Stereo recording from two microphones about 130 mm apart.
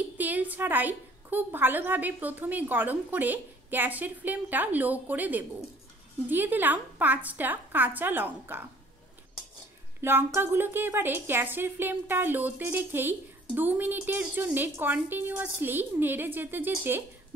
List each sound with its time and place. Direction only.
0.2 s a woman's voice: 15° right (ahead or behind)
10.0 s a woman's voice: 15° right (ahead or behind)